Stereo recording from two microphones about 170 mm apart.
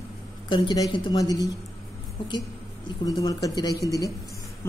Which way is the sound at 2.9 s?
20° left (ahead or behind).